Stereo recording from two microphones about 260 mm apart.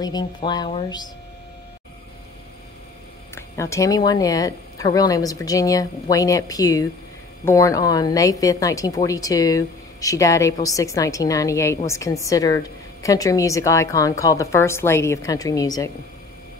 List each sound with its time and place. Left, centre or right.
0.0 s a woman's voice: centre
3.3 s a woman's voice: centre